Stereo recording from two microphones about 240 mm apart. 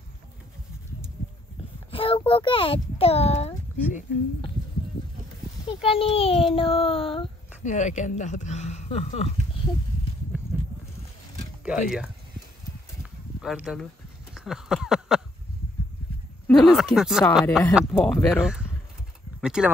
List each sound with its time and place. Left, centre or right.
1.9 s a child's voice: left
5.7 s a child's voice: left
11.6 s speech: centre
13.4 s speech: centre
14.3 s a sound: centre
16.4 s speech: centre